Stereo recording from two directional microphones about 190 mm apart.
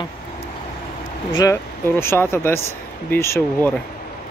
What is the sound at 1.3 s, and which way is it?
Speech, 15° left (ahead or behind).